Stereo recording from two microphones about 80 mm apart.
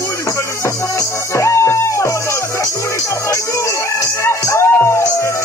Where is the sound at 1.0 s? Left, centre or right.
Left.